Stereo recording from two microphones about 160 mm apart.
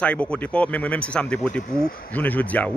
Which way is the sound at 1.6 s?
65° left (ahead or behind).